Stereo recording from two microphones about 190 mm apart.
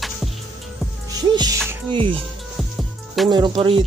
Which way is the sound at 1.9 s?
25° right (ahead or behind).